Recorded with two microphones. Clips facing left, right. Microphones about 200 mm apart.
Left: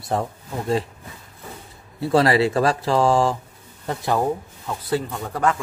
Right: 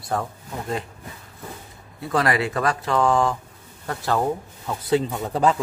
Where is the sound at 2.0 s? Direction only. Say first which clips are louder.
Left 5 dB; 30° left (ahead or behind).